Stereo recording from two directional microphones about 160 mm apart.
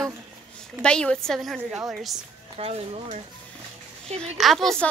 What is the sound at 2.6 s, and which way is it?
Speech, 40° right (ahead or behind).